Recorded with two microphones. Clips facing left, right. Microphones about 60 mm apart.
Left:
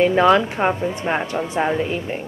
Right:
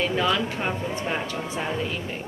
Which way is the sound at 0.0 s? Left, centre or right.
Left.